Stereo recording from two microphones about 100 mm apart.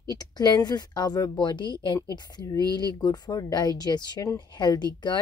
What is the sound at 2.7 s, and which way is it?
Speech, 45° left (ahead or behind).